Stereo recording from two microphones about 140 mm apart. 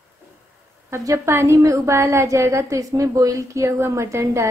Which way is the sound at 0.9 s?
20° right (ahead or behind).